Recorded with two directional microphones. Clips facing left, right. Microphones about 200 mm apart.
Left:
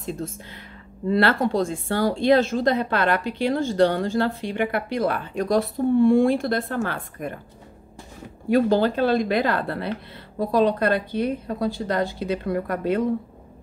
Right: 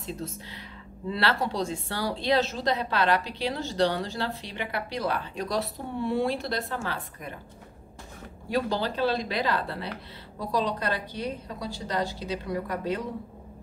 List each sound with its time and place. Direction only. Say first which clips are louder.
0.0 s a woman's voice: left 5 dB; 50° left (ahead or behind)
8.5 s a woman's voice: left 9 dB; 50° left (ahead or behind)